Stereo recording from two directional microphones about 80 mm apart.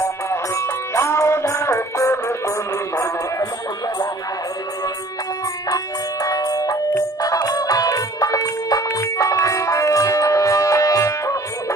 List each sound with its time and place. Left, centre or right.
0.3 s music: left
6.2 s music: left